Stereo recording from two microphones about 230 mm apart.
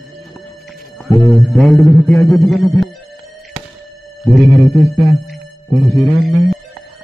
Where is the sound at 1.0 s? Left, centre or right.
Centre.